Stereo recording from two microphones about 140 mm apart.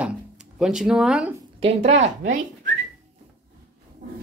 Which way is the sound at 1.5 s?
45° right (ahead or behind).